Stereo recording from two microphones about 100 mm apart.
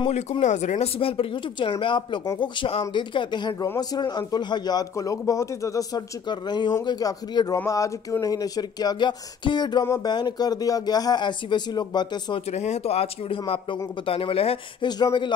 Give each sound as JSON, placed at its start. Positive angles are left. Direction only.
{"t": 0.1, "sound": "speech", "side_deg": 90}
{"t": 12.5, "sound": "speech", "side_deg": 90}
{"t": 14.8, "sound": "speech", "side_deg": 45}